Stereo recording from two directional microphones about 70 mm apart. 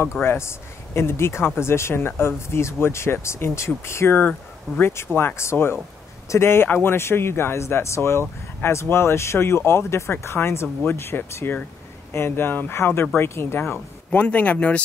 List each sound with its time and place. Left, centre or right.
0.0 s speech: left
14.1 s speech: left